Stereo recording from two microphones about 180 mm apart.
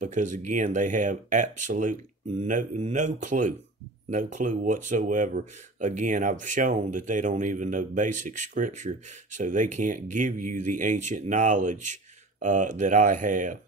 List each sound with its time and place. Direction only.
0.0 s speech: 45° right (ahead or behind)